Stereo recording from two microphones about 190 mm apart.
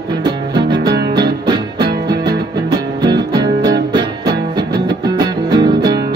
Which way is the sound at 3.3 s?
20° right (ahead or behind).